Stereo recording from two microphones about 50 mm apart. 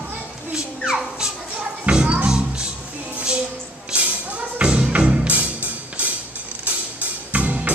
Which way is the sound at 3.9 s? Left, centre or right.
Right.